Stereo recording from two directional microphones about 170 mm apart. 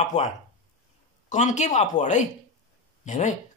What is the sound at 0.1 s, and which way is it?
Speech, 45° left (ahead or behind).